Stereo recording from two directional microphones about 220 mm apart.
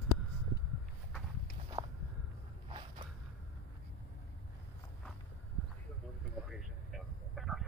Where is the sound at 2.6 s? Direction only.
20° right (ahead or behind).